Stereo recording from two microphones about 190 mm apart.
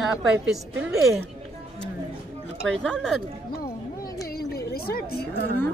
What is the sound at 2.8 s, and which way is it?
Speech, 5° left (ahead or behind).